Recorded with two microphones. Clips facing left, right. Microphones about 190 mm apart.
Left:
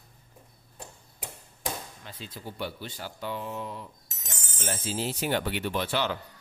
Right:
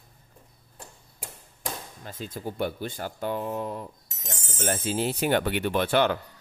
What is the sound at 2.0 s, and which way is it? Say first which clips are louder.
Speech: right 6 dB; 45° right (ahead or behind).